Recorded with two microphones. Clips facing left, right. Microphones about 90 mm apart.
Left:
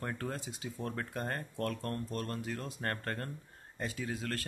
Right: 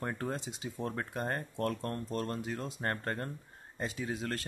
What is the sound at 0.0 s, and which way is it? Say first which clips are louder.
A man's voice: right 2 dB; 20° right (ahead or behind).